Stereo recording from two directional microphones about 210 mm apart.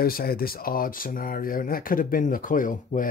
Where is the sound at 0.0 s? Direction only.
45° left (ahead or behind).